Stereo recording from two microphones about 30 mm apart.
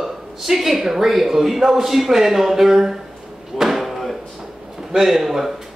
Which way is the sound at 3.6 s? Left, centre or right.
Centre.